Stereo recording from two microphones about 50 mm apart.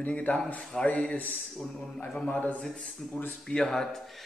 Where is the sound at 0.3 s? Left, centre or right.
Left.